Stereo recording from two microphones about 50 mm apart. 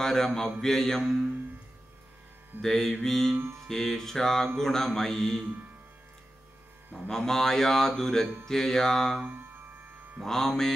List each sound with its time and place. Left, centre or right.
0.0 s mantra: centre
0.6 s speech: centre
2.6 s speech: centre
3.3 s mantra: right
3.6 s speech: centre
7.1 s speech: centre
10.2 s speech: centre